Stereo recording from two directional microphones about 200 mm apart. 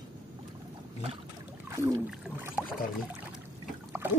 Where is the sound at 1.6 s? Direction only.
15° right (ahead or behind).